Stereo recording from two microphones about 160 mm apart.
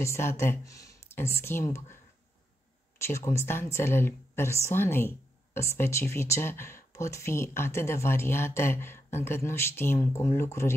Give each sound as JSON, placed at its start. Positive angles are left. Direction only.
{"t": 0.0, "sound": "speech", "side_deg": 15}
{"t": 3.0, "sound": "speech", "side_deg": 15}